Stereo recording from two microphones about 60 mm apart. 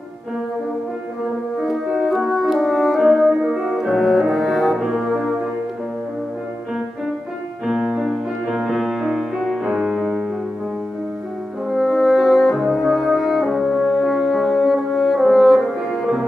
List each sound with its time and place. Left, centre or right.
1.6 s french horn: centre
3.6 s music: centre
7.6 s music: centre
9.7 s music: centre
9.9 s music: centre
11.7 s french horn: centre